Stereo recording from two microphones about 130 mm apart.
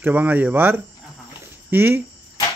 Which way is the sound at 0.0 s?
15° right (ahead or behind).